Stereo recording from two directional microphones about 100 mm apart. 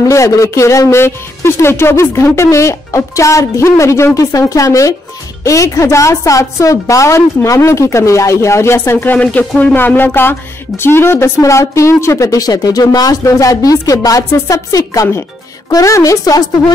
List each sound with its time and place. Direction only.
0.0 s a woman's voice: 30° left (ahead or behind)